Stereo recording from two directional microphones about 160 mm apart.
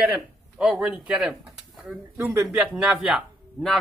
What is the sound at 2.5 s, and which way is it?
A man's voice, 5° right (ahead or behind).